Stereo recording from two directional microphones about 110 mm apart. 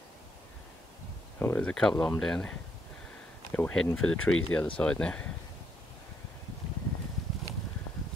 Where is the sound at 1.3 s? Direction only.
20° left (ahead or behind).